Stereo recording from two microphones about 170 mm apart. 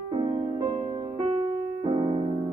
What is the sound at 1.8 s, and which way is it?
Music, 30° right (ahead or behind).